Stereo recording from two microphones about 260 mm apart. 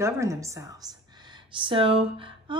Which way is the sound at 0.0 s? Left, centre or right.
Centre.